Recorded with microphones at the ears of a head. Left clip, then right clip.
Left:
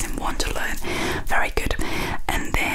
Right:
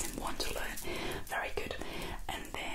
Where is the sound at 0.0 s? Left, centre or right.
Left.